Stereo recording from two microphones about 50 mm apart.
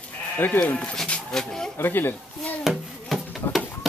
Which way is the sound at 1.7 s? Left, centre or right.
Left.